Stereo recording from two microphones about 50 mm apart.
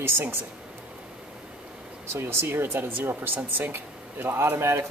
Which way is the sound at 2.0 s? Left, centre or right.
Right.